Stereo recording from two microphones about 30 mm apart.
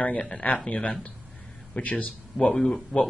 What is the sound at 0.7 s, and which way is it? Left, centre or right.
Speech, left.